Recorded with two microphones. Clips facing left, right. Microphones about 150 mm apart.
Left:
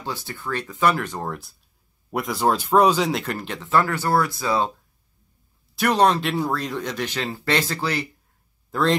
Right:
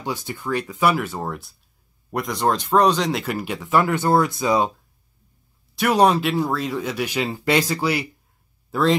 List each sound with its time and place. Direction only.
0.0 s speech: 15° right (ahead or behind)
3.3 s speech: 10° right (ahead or behind)
5.8 s speech: 5° right (ahead or behind)